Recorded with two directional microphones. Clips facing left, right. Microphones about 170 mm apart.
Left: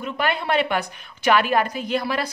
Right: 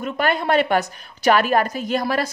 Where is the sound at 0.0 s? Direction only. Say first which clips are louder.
Right 3 dB; 45° right (ahead or behind).